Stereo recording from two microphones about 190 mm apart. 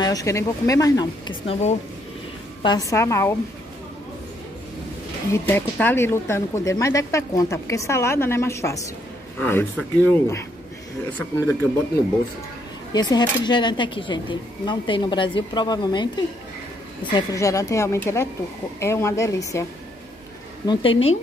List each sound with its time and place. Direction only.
0.0 s speech: 20° left (ahead or behind)
2.6 s speech: 20° left (ahead or behind)
5.3 s speech: 10° left (ahead or behind)
12.9 s speech: 20° left (ahead or behind)
17.1 s speech: 15° left (ahead or behind)
20.6 s speech: 25° left (ahead or behind)